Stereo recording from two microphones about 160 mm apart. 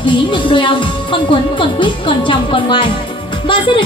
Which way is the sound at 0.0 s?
30° left (ahead or behind).